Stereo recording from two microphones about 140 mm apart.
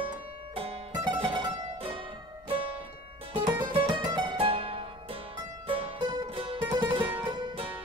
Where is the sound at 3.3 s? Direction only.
30° right (ahead or behind).